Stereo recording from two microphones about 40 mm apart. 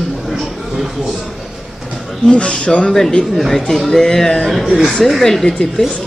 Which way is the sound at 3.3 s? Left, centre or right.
Centre.